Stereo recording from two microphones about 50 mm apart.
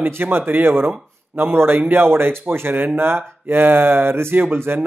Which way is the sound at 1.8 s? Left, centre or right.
Right.